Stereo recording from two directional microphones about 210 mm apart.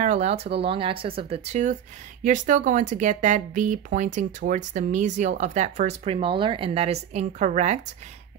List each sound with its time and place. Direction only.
0.0 s speech: 30° right (ahead or behind)